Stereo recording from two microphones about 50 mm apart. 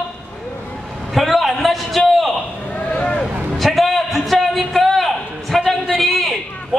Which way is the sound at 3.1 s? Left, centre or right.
Centre.